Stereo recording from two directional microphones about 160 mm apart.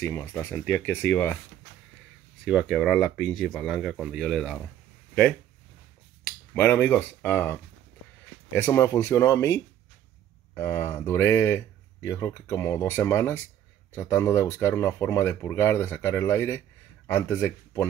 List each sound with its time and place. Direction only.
0.0 s speech: 15° left (ahead or behind)
2.4 s speech: centre (ahead or behind)
6.5 s speech: 10° left (ahead or behind)